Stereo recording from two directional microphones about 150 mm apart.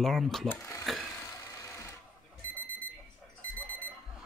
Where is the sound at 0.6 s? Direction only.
15° left (ahead or behind).